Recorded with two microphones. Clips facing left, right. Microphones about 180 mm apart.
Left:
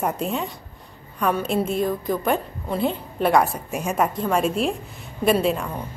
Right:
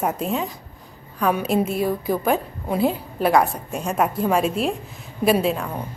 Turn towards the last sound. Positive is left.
turn(degrees=0)  # may be behind; listen again after turning